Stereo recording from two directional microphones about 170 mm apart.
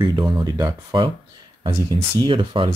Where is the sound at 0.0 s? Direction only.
30° right (ahead or behind).